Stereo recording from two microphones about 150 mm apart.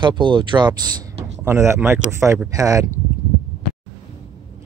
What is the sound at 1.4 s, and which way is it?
Speech, 15° right (ahead or behind).